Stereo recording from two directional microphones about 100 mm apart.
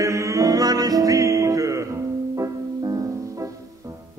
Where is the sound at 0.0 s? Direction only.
30° right (ahead or behind).